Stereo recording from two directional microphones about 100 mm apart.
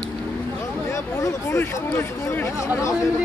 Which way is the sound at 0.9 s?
30° left (ahead or behind).